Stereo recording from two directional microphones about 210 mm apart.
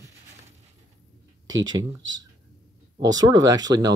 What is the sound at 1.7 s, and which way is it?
Speech, 65° right (ahead or behind).